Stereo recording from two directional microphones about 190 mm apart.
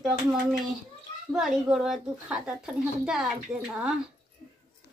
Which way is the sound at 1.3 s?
Centre (ahead or behind).